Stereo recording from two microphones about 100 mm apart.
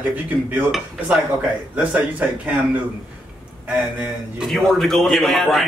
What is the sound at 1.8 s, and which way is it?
Speech, 15° right (ahead or behind).